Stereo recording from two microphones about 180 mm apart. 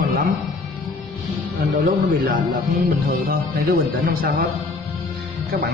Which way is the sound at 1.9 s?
50° right (ahead or behind).